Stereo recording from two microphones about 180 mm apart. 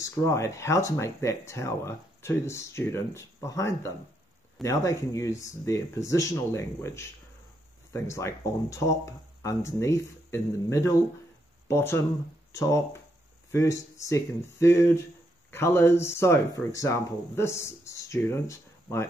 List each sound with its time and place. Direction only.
0.0 s speech: 15° left (ahead or behind)